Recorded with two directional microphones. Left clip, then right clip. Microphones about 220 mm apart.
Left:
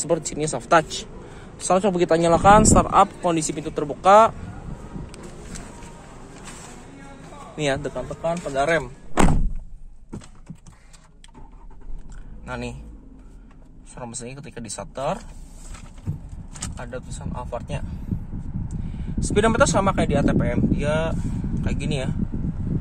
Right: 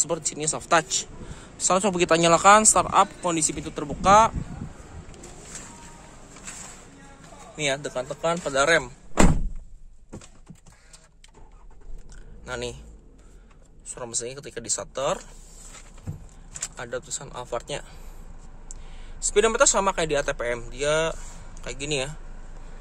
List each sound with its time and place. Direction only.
0.0 s a man's voice: 5° left (ahead or behind)
7.5 s speech: 10° left (ahead or behind)
7.9 s speech: 20° right (ahead or behind)
12.4 s a man's voice: 10° right (ahead or behind)
13.9 s speech: 15° right (ahead or behind)
16.7 s speech: 20° right (ahead or behind)
19.3 s speech: 5° right (ahead or behind)